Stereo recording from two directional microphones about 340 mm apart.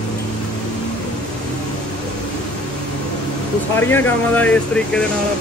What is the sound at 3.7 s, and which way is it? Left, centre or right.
Speech, centre.